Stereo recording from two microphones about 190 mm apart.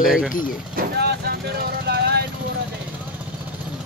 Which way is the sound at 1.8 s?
60° right (ahead or behind).